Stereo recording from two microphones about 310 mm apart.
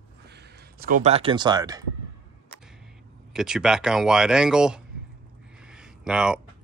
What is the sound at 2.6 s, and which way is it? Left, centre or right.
Speech, centre.